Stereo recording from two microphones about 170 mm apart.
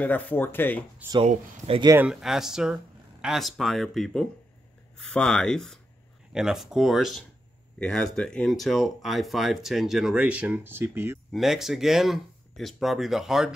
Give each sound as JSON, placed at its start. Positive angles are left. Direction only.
{"t": 0.0, "sound": "speech", "side_deg": 10}
{"t": 1.2, "sound": "speech", "side_deg": -35}
{"t": 1.9, "sound": "speech", "side_deg": -10}
{"t": 11.3, "sound": "speech", "side_deg": 0}